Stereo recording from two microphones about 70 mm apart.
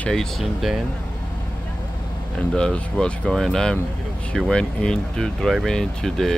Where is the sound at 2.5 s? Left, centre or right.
Centre.